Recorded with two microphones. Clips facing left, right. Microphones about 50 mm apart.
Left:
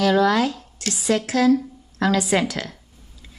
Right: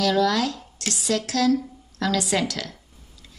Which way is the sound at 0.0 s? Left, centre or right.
Left.